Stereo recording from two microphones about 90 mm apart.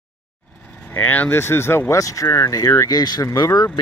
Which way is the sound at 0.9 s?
20° left (ahead or behind).